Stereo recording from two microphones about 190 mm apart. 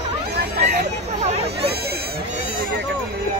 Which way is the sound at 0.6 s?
35° right (ahead or behind).